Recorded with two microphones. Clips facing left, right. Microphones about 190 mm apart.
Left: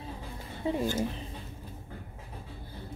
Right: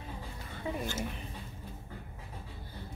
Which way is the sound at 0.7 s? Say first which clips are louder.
Left 7 dB; 25° left (ahead or behind).